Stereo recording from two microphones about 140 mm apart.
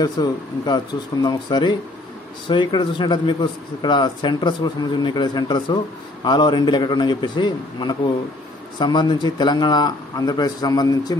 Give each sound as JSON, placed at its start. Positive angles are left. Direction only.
{"t": 0.0, "sound": "a man's voice", "side_deg": 30}